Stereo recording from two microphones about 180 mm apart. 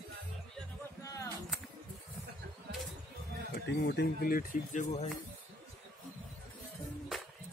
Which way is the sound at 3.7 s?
65° left (ahead or behind).